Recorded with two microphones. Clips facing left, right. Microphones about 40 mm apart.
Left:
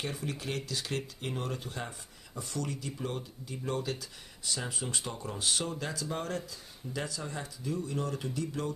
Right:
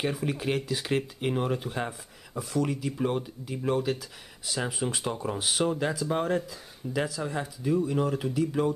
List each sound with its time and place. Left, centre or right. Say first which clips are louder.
0.0 s speech: right 8 dB; centre